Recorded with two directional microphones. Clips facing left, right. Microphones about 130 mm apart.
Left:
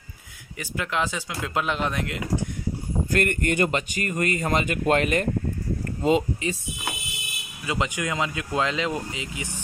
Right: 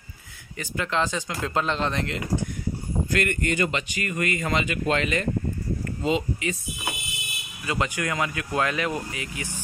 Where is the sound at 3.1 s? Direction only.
45° left (ahead or behind).